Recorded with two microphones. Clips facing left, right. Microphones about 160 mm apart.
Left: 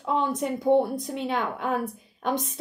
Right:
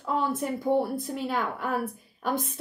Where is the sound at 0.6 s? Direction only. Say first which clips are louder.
Left 5 dB; 25° left (ahead or behind).